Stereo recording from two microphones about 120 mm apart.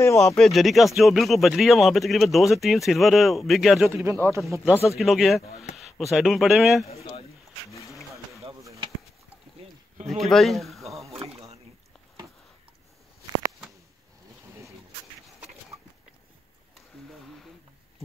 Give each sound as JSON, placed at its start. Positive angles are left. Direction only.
{"t": 0.0, "sound": "speech", "side_deg": 25}
{"t": 0.4, "sound": "speech", "side_deg": 0}
{"t": 3.9, "sound": "speech", "side_deg": -20}
{"t": 4.8, "sound": "speech", "side_deg": 0}
{"t": 6.9, "sound": "speech", "side_deg": 60}
{"t": 7.7, "sound": "a sound", "side_deg": 25}
{"t": 9.6, "sound": "a sound", "side_deg": -60}
{"t": 10.0, "sound": "speech", "side_deg": 0}
{"t": 11.1, "sound": "a sound", "side_deg": -60}